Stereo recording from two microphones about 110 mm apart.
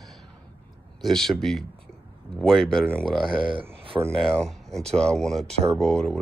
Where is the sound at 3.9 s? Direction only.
15° right (ahead or behind).